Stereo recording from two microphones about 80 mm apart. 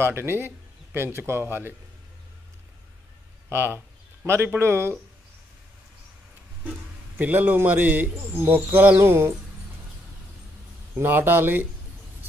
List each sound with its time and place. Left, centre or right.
0.0 s a man's voice: right
3.4 s speech: right
7.2 s a man's voice: right
11.0 s a man's voice: right